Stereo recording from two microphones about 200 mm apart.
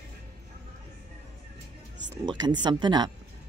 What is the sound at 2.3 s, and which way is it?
Speech, 20° right (ahead or behind).